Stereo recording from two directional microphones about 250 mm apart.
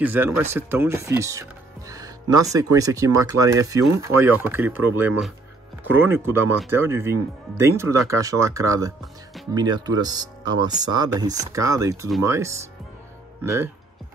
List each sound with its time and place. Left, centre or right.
0.0 s speech: centre